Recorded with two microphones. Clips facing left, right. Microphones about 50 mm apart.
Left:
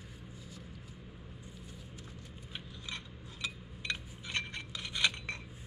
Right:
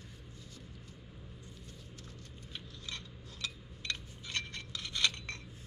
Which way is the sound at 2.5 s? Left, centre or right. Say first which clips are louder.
Left 2 dB; centre.